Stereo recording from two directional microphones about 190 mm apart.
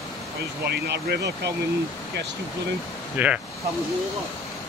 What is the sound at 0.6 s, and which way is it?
Speech, 60° right (ahead or behind).